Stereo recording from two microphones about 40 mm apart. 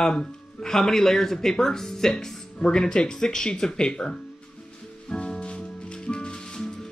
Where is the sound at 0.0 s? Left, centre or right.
Centre.